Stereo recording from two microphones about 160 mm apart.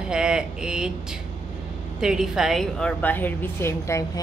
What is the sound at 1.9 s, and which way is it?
Speech, 5° right (ahead or behind).